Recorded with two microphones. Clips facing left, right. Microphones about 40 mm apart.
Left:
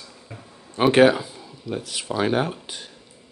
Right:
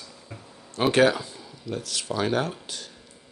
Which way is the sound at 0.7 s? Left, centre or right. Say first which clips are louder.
Left 4 dB; left.